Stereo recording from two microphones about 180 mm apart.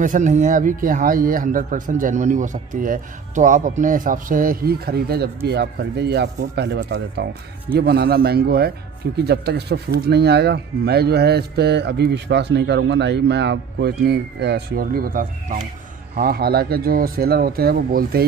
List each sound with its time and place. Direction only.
0.0 s a man's voice: 45° right (ahead or behind)